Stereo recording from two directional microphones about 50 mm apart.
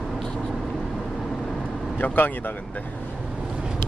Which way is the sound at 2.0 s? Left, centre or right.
Left.